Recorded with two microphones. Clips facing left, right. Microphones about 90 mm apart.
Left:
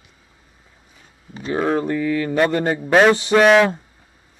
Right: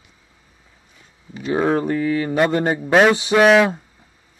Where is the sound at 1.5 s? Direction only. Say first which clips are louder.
Right 1 dB; 10° right (ahead or behind).